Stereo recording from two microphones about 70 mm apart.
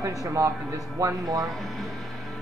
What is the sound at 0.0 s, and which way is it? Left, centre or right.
Speech, right.